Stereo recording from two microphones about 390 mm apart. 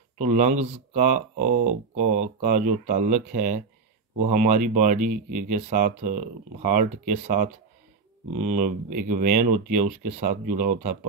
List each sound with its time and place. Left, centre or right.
0.2 s speech: centre